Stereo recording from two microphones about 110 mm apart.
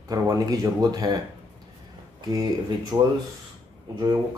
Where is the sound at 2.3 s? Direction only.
35° right (ahead or behind).